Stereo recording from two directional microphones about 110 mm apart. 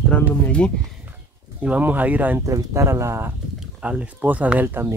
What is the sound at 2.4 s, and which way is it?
Speech, 30° right (ahead or behind).